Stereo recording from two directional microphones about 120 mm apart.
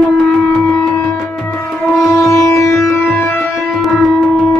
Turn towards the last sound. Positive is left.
turn(degrees=25)  # may be behind; listen again after turning